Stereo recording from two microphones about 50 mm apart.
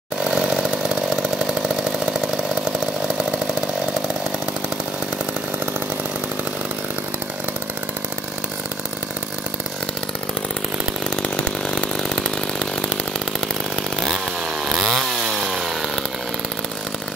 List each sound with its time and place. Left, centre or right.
0.3 s chainsaw: centre
11.4 s chainsaw: centre
13.9 s chainsaw: centre